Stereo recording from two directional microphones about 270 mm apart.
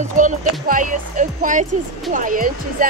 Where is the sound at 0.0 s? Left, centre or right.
Right.